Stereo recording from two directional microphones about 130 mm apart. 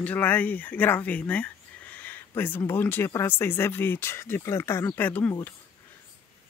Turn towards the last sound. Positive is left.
turn(degrees=15)  # may be behind; listen again after turning